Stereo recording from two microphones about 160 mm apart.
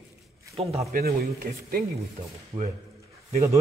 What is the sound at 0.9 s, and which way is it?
Speech, 70° right (ahead or behind).